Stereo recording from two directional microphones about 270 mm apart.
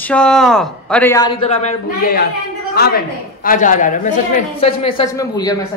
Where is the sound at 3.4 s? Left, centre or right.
Left; by 5.5 s centre.